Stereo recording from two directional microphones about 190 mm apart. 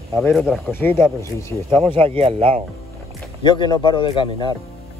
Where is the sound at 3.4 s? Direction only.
25° left (ahead or behind).